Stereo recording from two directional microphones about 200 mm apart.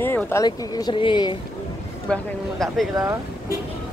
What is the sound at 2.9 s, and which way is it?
Speech, 15° right (ahead or behind).